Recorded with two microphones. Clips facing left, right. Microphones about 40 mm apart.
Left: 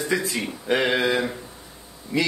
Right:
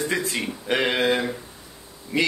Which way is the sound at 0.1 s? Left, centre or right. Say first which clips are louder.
Left 4 dB; right.